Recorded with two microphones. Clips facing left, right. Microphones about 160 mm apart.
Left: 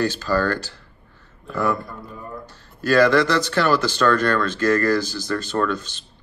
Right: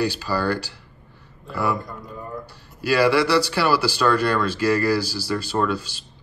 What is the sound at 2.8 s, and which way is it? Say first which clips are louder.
Speech: left 2 dB; 10° right (ahead or behind).